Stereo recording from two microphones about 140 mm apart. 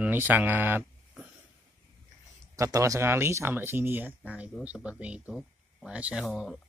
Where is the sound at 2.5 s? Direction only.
25° right (ahead or behind).